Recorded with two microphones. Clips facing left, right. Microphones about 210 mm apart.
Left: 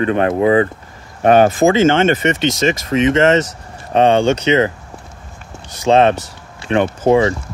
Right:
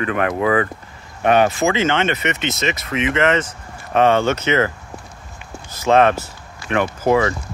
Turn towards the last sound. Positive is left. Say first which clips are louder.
# left 4 dB
turn(degrees=25)  # may be behind; listen again after turning